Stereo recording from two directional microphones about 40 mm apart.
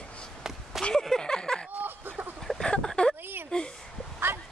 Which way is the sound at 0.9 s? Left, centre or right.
Centre.